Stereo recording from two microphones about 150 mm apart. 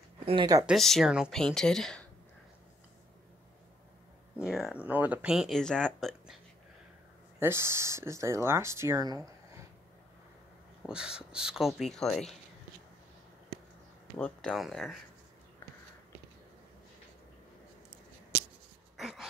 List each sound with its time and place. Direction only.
0.2 s a sound: 40° right (ahead or behind)
0.7 s speech: centre (ahead or behind)
4.4 s speech: 5° right (ahead or behind)
7.3 s speech: 15° right (ahead or behind)
10.9 s speech: 5° right (ahead or behind)
14.1 s speech: 10° left (ahead or behind)
18.9 s a sound: centre (ahead or behind)